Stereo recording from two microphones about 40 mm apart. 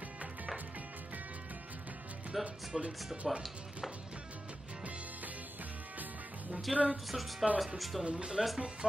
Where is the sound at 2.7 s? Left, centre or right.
Centre.